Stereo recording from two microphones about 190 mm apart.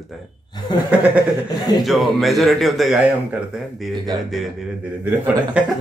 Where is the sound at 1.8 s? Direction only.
Centre (ahead or behind).